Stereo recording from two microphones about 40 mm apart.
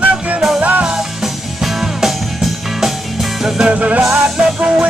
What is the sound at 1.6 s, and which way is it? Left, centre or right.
Music, centre.